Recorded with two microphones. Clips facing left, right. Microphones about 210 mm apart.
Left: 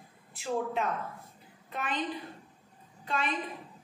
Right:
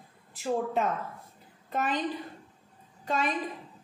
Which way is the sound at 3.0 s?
40° right (ahead or behind).